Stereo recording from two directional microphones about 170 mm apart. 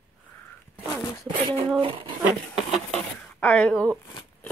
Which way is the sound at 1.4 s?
30° right (ahead or behind).